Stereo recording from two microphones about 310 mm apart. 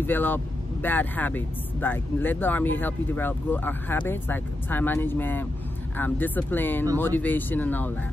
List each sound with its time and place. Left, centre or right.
0.0 s speech: centre